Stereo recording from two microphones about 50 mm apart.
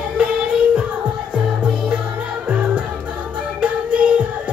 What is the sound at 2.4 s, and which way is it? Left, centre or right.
Music, right.